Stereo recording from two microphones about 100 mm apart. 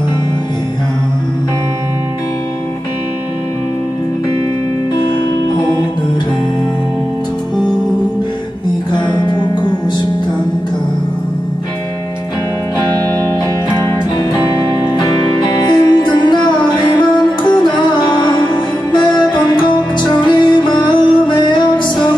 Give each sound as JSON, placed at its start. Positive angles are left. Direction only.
{"t": 8.9, "sound": "music", "side_deg": 50}
{"t": 15.6, "sound": "music", "side_deg": 45}